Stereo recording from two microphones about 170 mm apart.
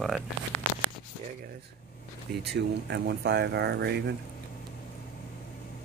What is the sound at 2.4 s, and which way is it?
Speech, 80° right.